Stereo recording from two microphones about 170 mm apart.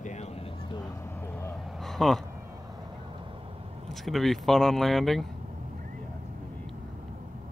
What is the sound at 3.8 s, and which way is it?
Speech, centre (ahead or behind).